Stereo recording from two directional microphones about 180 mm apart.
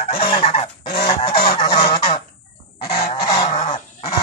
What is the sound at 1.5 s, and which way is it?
Goose, 25° left (ahead or behind).